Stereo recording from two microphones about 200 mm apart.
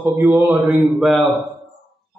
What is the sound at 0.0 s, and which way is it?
A man's voice, 15° right (ahead or behind).